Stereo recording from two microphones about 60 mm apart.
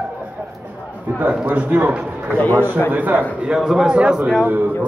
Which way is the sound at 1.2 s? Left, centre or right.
Right.